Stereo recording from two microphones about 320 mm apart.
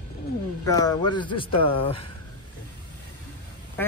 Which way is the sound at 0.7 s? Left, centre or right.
Centre.